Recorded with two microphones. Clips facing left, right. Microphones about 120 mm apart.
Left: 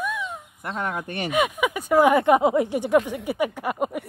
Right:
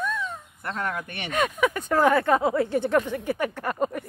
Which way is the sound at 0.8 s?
25° left (ahead or behind).